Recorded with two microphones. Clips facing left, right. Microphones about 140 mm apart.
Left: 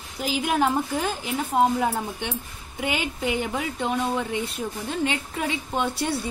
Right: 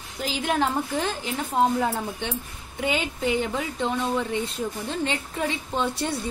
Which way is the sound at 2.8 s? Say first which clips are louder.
Right 1 dB; 10° left (ahead or behind).